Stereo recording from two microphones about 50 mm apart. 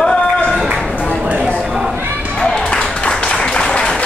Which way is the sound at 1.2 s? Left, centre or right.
Right.